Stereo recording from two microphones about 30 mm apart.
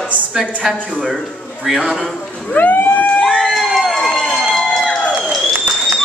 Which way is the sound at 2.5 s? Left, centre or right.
Left.